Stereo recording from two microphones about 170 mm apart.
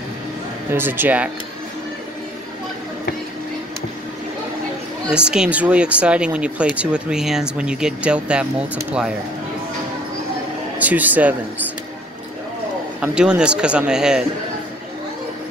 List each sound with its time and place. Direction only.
0.7 s speech: 10° right (ahead or behind)
5.1 s speech: 5° right (ahead or behind)
10.8 s speech: 10° right (ahead or behind)
13.0 s speech: 5° right (ahead or behind)